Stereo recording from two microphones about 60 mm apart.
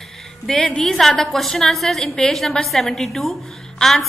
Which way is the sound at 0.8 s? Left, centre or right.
Centre.